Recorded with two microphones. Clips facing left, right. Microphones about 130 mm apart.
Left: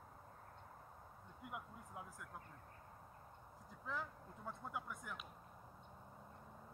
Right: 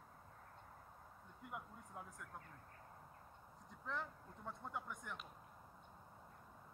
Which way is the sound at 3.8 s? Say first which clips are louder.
Even; 5° left (ahead or behind).